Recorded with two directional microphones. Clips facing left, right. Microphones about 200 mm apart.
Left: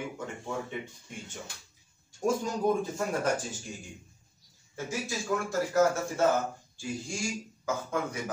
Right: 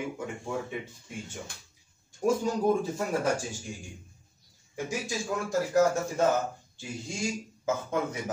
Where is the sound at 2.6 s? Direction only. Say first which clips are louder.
Left 1 dB; 10° right (ahead or behind).